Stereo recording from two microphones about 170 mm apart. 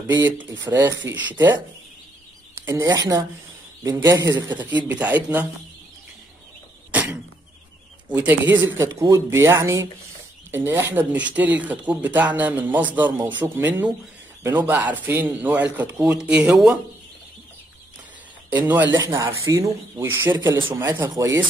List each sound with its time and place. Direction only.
0.0 s speech: 10° right (ahead or behind)
0.7 s speech: 25° right (ahead or behind)
1.0 s speech: 90° right
1.3 s speech: 10° right (ahead or behind)
2.6 s speech: 20° right (ahead or behind)
4.8 s speech: 10° right (ahead or behind)
6.9 s a sound: 10° right (ahead or behind)
8.1 s speech: 10° right (ahead or behind)
18.5 s speech: 10° right (ahead or behind)